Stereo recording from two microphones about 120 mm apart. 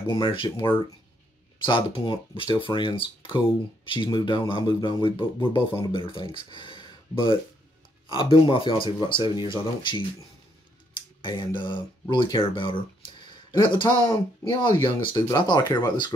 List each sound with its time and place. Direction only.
0.0 s speech: 40° left (ahead or behind)